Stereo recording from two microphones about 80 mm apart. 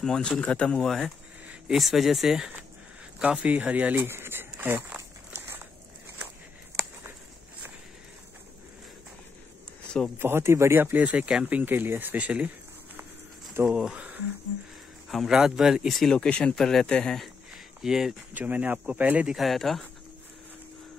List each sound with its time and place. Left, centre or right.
0.0 s speech: centre
3.2 s a sound: centre
10.1 s speech: right
13.7 s speech: centre
13.9 s a sound: centre
15.0 s speech: centre
17.8 s speech: centre
18.3 s speech: centre
19.2 s speech: centre